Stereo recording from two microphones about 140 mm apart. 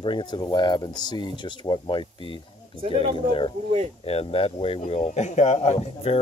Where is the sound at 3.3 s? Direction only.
40° left (ahead or behind).